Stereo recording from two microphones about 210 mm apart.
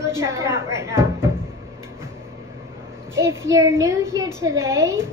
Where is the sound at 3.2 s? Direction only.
15° right (ahead or behind).